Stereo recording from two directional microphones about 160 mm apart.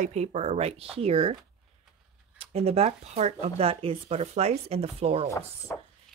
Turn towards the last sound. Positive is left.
turn(degrees=20)  # may be behind; listen again after turning